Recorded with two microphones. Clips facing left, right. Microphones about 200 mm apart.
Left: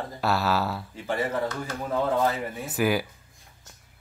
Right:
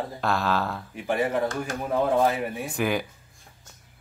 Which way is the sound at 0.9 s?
15° right (ahead or behind).